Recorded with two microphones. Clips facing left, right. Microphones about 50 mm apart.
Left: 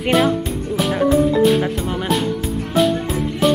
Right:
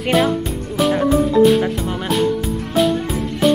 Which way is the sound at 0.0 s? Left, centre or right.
Centre.